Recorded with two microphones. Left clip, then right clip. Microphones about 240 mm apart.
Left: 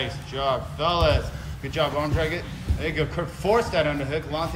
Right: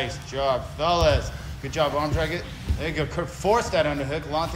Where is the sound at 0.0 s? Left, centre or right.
Centre.